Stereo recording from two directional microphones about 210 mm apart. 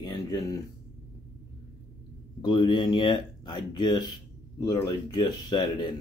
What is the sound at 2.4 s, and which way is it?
Speech, 20° left (ahead or behind).